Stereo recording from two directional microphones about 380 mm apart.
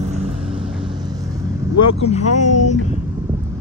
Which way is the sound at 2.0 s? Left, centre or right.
Centre.